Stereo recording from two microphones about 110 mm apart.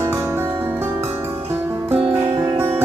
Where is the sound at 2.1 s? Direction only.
25° right (ahead or behind).